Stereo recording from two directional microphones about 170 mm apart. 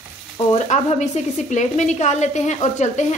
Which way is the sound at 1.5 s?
45° left (ahead or behind).